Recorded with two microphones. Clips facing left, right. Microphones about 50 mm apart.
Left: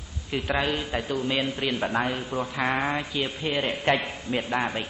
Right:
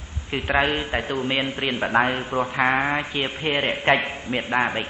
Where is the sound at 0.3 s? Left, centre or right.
Right.